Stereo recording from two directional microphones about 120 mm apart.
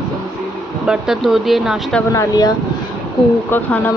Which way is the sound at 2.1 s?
30° left (ahead or behind).